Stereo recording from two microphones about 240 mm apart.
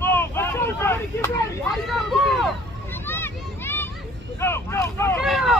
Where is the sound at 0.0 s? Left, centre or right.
Centre.